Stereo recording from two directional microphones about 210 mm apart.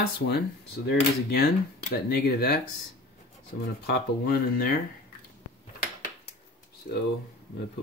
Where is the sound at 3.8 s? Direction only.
45° left (ahead or behind).